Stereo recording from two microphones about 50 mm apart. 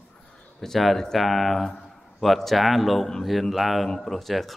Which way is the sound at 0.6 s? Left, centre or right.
Centre.